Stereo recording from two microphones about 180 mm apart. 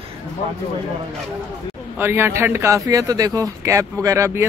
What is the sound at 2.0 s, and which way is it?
A man's voice, 15° right (ahead or behind).